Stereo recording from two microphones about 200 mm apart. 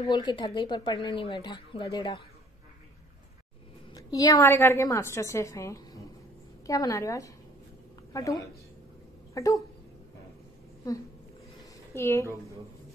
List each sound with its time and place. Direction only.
0.0 s speech: 20° left (ahead or behind)
3.9 s a woman's voice: 20° left (ahead or behind)
11.9 s a woman's voice: 15° left (ahead or behind)